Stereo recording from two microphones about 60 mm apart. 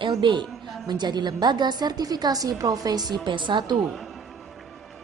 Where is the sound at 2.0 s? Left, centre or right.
Right.